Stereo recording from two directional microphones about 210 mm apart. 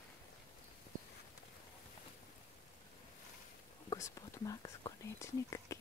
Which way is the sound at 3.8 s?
15° left (ahead or behind).